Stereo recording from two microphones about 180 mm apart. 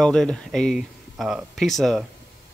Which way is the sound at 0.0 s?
5° left (ahead or behind).